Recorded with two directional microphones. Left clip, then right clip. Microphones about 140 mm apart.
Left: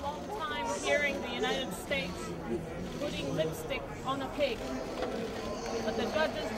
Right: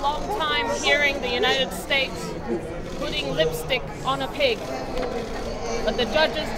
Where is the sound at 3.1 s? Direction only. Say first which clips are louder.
Right 12 dB; 25° right (ahead or behind).